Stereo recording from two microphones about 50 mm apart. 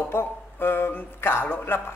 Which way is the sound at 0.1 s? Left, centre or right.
Left.